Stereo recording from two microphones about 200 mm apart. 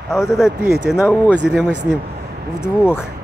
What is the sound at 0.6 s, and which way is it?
Speech, 55° left (ahead or behind).